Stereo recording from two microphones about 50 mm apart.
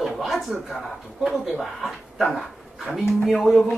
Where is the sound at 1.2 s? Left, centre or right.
Centre.